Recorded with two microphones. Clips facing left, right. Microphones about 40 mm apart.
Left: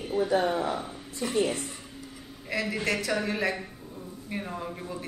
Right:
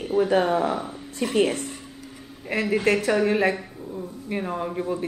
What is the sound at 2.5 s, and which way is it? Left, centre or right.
Speech, right.